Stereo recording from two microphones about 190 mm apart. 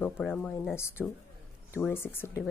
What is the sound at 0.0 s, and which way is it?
Speech, 5° left (ahead or behind).